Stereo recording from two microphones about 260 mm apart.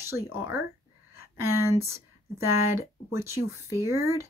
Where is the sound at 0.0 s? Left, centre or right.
Centre.